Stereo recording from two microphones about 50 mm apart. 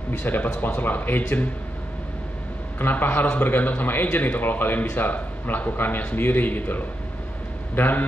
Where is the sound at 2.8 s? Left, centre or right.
Left.